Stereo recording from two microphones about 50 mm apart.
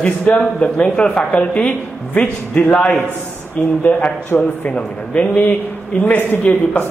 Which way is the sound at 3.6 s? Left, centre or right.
Left.